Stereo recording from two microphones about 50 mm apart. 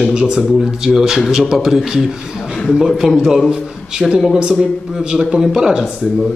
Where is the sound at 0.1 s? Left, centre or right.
Centre.